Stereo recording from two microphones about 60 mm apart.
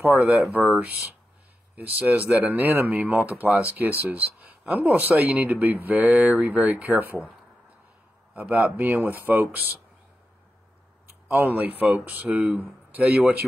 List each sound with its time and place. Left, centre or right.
0.3 s speech: right
1.8 s speech: right
8.4 s speech: right
11.5 s speech: right